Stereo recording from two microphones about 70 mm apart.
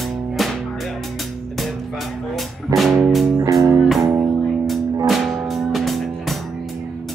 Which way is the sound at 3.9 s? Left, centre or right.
Centre.